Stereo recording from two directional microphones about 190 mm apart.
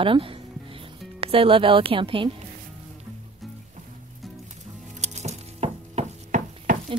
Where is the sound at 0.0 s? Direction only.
30° right (ahead or behind).